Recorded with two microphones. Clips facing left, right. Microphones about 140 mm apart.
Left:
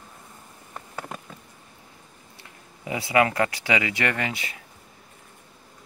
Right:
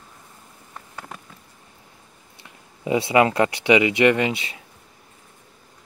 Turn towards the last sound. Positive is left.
turn(degrees=-25)  # may be behind; listen again after turning